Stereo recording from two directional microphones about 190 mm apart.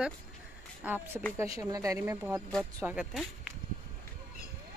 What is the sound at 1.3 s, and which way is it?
Speech, 15° right (ahead or behind).